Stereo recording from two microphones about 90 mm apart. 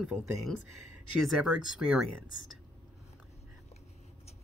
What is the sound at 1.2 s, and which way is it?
Speech, 5° right (ahead or behind).